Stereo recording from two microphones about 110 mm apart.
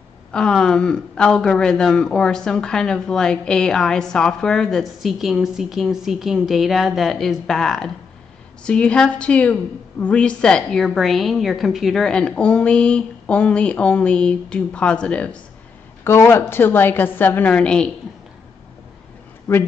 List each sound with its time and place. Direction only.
0.3 s a woman's voice: 5° left (ahead or behind)
16.0 s a woman's voice: 20° left (ahead or behind)